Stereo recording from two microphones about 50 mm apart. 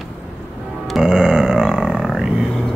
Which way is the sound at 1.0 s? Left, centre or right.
Centre.